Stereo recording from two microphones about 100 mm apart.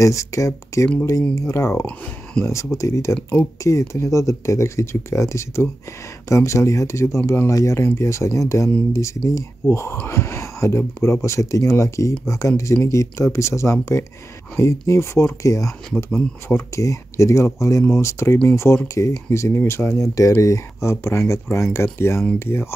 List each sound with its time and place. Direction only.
0.0 s speech: 30° left (ahead or behind)